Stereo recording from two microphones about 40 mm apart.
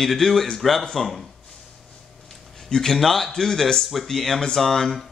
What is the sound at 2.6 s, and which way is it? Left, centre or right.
A man's voice, centre.